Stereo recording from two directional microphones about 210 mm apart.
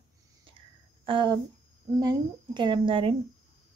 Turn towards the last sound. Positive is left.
turn(degrees=-25)  # may be behind; listen again after turning